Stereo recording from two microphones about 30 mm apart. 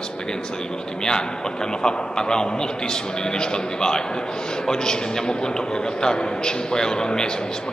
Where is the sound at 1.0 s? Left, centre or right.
Left.